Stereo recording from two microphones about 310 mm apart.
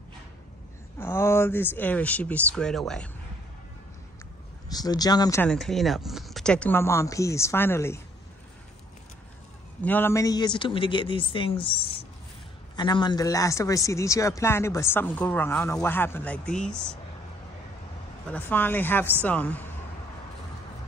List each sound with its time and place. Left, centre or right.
0.9 s speech: centre
4.6 s speech: centre
9.8 s speech: centre
18.3 s speech: centre